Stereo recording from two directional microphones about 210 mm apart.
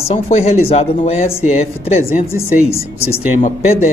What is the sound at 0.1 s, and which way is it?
Speech, 35° left (ahead or behind).